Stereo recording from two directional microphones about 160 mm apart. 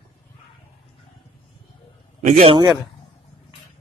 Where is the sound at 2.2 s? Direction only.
45° right (ahead or behind).